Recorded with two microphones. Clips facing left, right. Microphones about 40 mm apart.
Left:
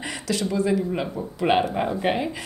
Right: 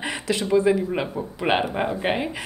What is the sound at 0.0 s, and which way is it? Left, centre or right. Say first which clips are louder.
Speech: right 1 dB; right.